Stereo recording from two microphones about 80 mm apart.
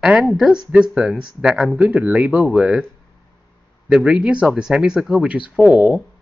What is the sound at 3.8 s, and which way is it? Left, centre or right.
Speech, centre.